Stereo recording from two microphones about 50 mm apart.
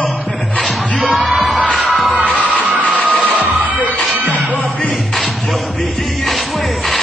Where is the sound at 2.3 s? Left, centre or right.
Left.